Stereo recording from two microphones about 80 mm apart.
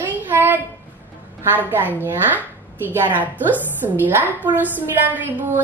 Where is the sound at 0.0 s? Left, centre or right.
Right.